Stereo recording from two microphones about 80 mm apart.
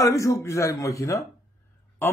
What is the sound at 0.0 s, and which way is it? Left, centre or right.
A man's voice, left.